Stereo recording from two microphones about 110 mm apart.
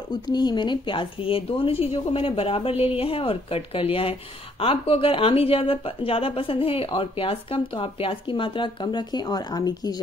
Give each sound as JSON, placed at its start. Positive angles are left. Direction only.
{"t": 0.1, "sound": "a woman's voice", "side_deg": 40}